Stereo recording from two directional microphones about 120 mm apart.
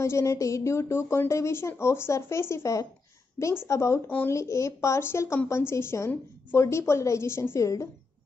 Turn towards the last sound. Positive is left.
turn(degrees=25)  # may be behind; listen again after turning